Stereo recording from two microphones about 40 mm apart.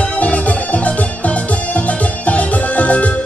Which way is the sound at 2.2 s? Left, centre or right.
Left.